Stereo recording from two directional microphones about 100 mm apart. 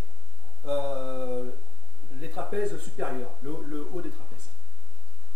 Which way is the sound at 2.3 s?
10° right (ahead or behind).